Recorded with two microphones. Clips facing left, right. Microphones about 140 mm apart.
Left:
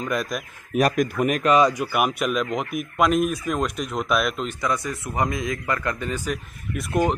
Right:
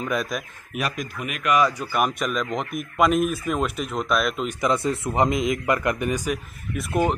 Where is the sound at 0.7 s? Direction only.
50° left (ahead or behind).